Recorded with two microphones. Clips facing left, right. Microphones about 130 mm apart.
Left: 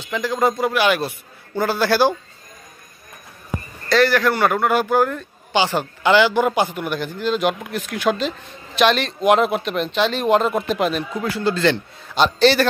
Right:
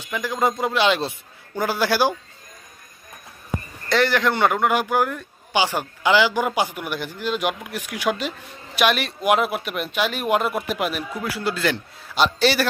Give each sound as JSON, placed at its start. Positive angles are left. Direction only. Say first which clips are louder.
{"t": 0.0, "sound": "speech", "louder": "left 3 dB", "side_deg": -15}
{"t": 3.9, "sound": "speech", "louder": "left 3 dB", "side_deg": -20}